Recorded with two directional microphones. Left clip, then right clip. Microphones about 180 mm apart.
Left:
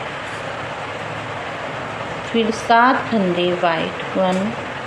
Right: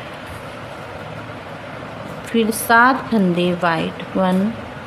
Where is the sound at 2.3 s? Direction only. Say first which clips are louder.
Right 1 dB; 35° right (ahead or behind).